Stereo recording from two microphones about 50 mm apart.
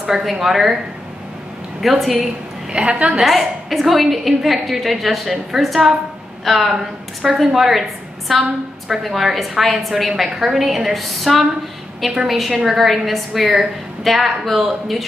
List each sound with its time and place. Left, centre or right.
0.0 s a woman's voice: centre
1.8 s a woman's voice: centre
2.7 s a woman's voice: right
3.2 s a woman's voice: centre